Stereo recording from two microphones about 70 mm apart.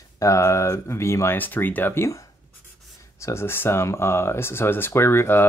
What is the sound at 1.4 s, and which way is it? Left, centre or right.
Speech, left.